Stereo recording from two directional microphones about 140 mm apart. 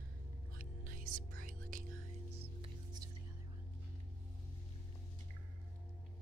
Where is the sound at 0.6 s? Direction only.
85° right.